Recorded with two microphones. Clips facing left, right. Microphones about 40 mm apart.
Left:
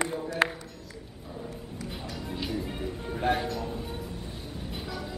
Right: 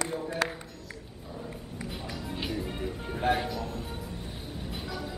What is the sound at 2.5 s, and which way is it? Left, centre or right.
Music, centre.